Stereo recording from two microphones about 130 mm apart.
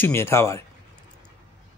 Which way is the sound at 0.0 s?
20° left (ahead or behind).